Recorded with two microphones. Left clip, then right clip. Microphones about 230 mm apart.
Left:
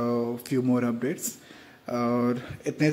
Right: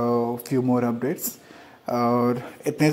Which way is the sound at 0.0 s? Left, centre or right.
Centre.